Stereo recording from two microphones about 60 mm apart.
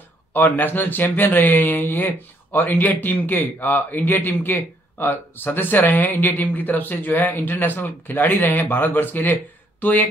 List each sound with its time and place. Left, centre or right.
0.3 s speech: left